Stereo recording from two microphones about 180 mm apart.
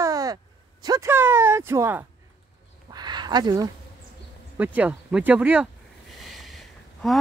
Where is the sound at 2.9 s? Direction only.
25° right (ahead or behind).